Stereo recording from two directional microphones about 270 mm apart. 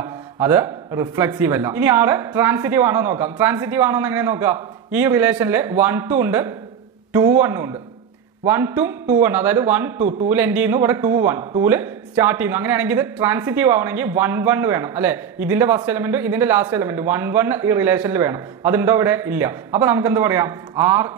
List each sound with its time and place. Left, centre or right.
0.0 s a man's voice: centre
9.9 s a man's voice: right
10.3 s a man's voice: centre